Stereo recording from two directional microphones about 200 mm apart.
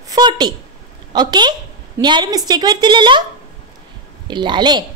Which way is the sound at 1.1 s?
20° right (ahead or behind).